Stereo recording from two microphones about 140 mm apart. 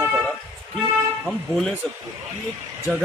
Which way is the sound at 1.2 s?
5° left (ahead or behind).